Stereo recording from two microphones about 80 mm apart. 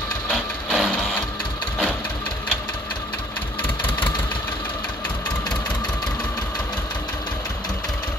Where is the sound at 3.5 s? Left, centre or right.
Left.